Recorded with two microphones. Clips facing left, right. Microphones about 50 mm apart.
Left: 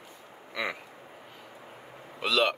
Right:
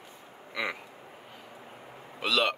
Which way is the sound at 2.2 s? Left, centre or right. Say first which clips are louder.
Left 1 dB; centre.